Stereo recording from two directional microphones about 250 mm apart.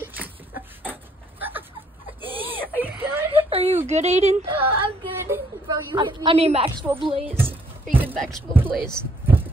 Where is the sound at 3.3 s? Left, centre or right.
Right.